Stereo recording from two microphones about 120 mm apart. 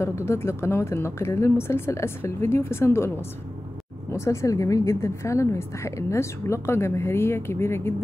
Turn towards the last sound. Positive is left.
turn(degrees=20)  # may be behind; listen again after turning